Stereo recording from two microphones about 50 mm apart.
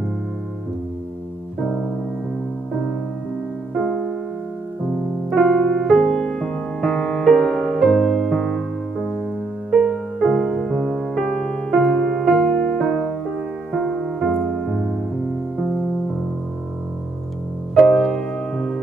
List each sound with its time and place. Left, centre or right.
5.3 s piano: centre
5.7 s music: centre
10.2 s music: centre
12.5 s music: centre
12.8 s music: centre
14.2 s music: centre
17.7 s music: centre